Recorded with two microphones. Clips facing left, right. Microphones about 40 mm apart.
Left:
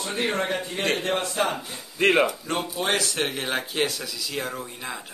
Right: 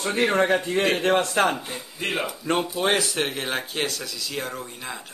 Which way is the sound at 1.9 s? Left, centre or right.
Left.